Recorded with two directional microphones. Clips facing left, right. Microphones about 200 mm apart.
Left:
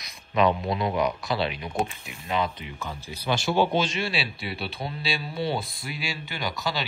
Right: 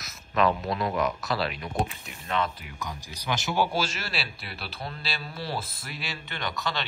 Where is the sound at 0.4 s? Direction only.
Centre (ahead or behind).